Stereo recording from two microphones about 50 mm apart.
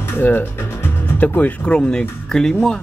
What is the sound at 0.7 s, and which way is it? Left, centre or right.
Music, left.